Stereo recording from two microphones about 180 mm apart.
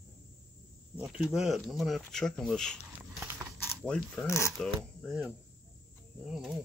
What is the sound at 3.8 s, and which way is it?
Speech, 5° left (ahead or behind).